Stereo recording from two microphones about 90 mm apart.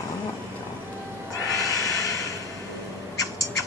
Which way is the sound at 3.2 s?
40° left (ahead or behind).